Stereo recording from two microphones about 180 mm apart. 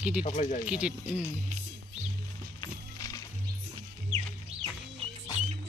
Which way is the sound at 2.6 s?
20° left (ahead or behind).